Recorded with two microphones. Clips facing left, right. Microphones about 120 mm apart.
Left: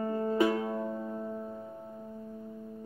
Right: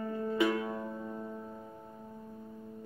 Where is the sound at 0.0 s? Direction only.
40° left (ahead or behind).